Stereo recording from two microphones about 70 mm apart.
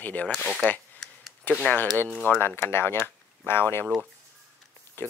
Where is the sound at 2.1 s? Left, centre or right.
Centre.